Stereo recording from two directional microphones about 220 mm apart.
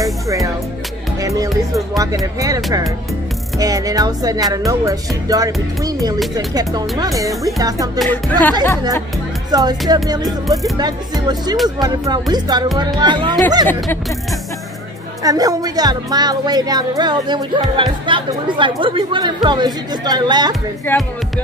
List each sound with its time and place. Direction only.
0.0 s music: 15° right (ahead or behind)
1.7 s a woman's voice: 15° right (ahead or behind)
8.0 s speech: 5° left (ahead or behind)
9.5 s a woman's voice: 20° right (ahead or behind)
15.2 s a woman's voice: 15° right (ahead or behind)
20.9 s speech: 10° left (ahead or behind)